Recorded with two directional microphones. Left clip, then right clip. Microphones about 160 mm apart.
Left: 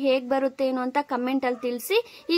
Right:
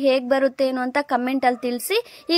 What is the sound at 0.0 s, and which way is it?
A woman's voice, 20° right (ahead or behind).